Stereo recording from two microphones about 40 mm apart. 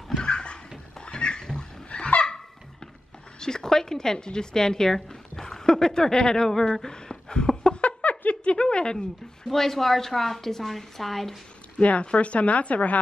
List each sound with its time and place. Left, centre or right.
0.2 s a sound: left
1.9 s goose: left
3.3 s a woman's voice: centre
8.3 s a sound: left
9.5 s a woman's voice: centre
11.8 s speech: left